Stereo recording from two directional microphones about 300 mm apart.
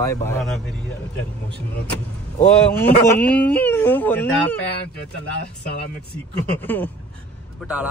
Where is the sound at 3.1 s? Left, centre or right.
Centre.